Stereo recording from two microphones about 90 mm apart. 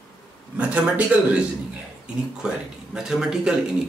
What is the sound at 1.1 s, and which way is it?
Speech, 15° right (ahead or behind).